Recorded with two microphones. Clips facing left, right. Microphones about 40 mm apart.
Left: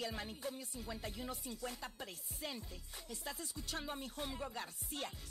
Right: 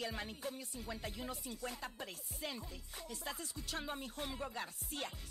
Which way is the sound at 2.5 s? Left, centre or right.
Right.